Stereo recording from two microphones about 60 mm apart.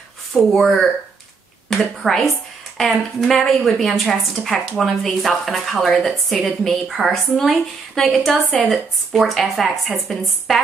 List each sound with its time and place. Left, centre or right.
0.3 s a woman's voice: centre
8.1 s a woman's voice: centre